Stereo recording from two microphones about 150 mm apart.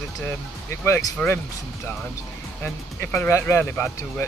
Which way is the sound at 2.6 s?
15° left (ahead or behind).